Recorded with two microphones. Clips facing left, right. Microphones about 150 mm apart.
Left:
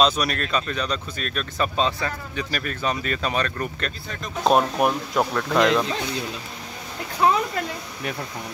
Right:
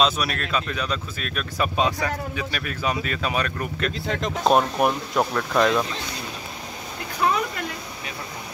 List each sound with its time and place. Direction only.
0.0 s speech: 5° right (ahead or behind)
4.0 s speech: 90° right
4.5 s speech: centre (ahead or behind)
7.2 s speech: 25° left (ahead or behind)